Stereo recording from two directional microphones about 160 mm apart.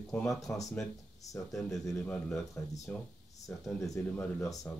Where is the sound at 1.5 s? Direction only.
Centre (ahead or behind).